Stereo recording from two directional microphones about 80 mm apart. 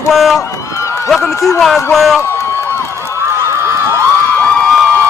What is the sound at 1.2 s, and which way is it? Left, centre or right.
Speech, left.